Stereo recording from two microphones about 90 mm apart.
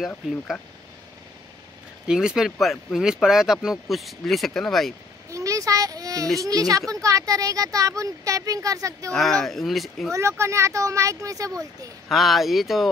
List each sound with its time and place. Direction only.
2.0 s speech: 5° right (ahead or behind)
5.3 s a sound: 40° right (ahead or behind)
6.4 s speech: 40° right (ahead or behind)
9.1 s speech: 5° left (ahead or behind)
10.1 s speech: 30° right (ahead or behind)
12.1 s speech: centre (ahead or behind)